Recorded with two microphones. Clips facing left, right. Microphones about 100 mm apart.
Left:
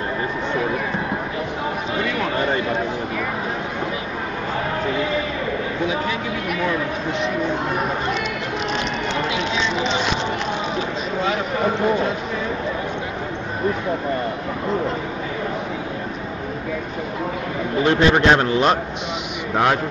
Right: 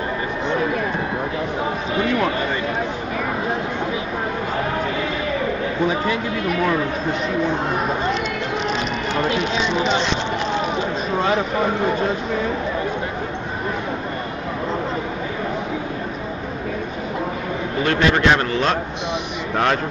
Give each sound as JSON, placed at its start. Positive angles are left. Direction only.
{"t": 17.8, "sound": "a man's voice", "side_deg": 20}